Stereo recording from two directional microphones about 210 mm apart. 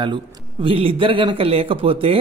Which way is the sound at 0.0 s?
25° right (ahead or behind).